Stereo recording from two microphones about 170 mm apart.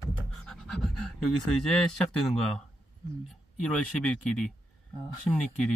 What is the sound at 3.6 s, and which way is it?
Speech, 5° left (ahead or behind).